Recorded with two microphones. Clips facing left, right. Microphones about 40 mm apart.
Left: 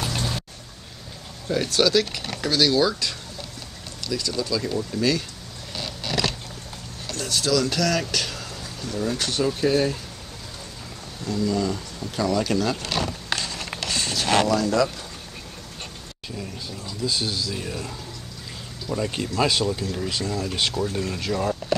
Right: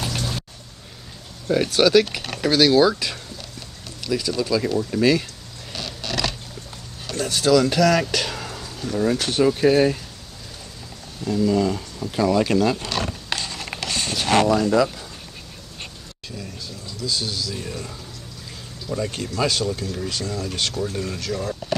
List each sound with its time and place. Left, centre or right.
0.1 s a sound: centre
1.5 s speech: centre
7.1 s speech: centre
11.2 s speech: centre
14.1 s speech: centre
16.3 s speech: centre
21.2 s speech: centre